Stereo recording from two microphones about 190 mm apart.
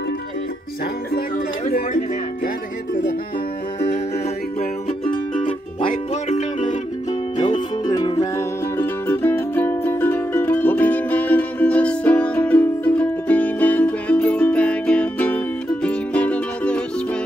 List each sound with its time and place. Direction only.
5.1 s music: 25° left (ahead or behind)
7.8 s music: 20° left (ahead or behind)